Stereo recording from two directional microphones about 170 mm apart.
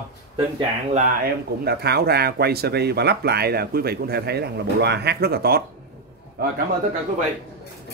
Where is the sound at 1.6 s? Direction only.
70° right (ahead or behind).